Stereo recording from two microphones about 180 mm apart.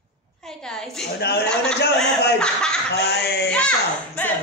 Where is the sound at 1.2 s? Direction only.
65° left (ahead or behind).